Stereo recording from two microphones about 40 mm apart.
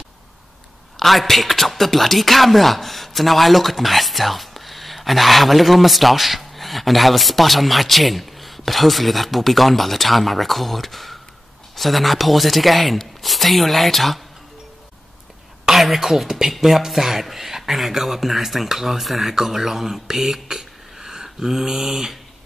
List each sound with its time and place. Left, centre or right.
0.9 s speech: centre
15.7 s speech: centre
21.0 s a sound: centre